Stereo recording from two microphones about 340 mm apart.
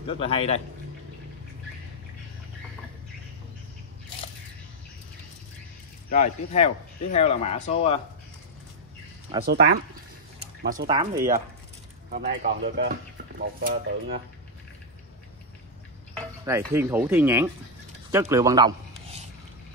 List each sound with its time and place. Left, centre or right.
0.0 s a man's voice: centre
6.0 s speech: centre
9.4 s speech: right
16.4 s speech: centre